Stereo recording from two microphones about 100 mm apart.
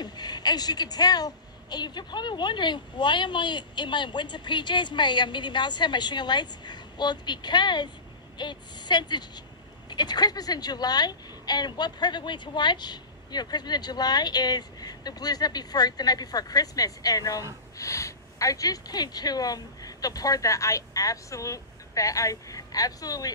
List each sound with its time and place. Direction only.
0.0 s a woman's voice: 45° left (ahead or behind)